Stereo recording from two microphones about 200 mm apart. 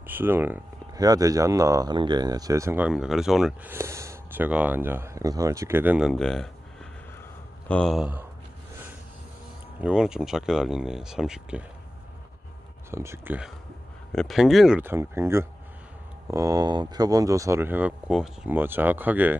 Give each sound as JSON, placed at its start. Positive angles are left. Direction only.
{"t": 0.0, "sound": "speech", "side_deg": -10}
{"t": 3.7, "sound": "speech", "side_deg": -15}
{"t": 9.8, "sound": "speech", "side_deg": -5}
{"t": 12.9, "sound": "speech", "side_deg": -15}